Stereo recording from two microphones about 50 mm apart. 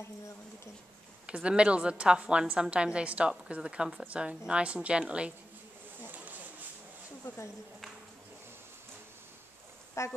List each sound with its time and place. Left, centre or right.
1.2 s a woman's voice: right
5.9 s a sound: right
10.0 s speech: left